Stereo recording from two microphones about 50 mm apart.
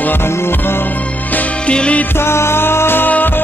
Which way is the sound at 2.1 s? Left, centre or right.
Left.